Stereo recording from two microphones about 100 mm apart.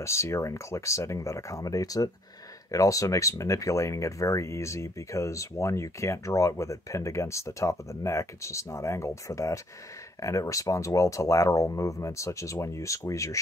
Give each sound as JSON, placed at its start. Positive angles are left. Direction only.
{"t": 0.0, "sound": "speech", "side_deg": 30}